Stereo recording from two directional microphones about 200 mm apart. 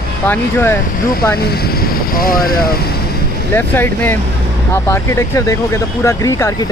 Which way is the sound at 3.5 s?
10° left (ahead or behind).